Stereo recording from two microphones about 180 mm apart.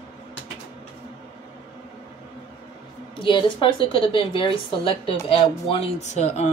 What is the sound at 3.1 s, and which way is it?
A woman's voice, 25° left (ahead or behind).